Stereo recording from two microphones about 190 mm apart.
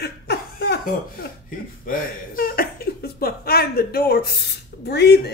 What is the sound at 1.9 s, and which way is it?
Speech, 50° left (ahead or behind).